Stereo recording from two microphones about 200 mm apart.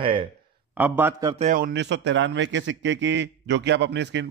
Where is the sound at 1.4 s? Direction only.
45° right (ahead or behind).